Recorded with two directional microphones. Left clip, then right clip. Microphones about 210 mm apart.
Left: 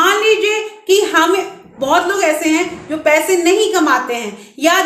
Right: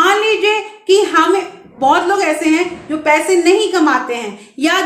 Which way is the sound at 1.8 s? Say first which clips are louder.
Right 2 dB; 5° right (ahead or behind).